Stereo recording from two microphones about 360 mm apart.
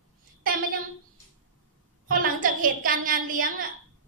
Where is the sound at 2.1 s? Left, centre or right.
Right.